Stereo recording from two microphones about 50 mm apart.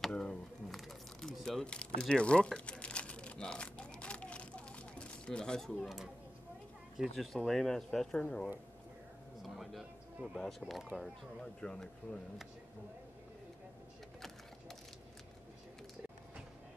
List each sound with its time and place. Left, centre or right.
0.1 s pigeon: centre
0.7 s crumpling: centre
1.6 s crumpling: centre
7.2 s speech: centre
9.4 s a sound: centre
10.6 s speech: right
11.4 s speech: centre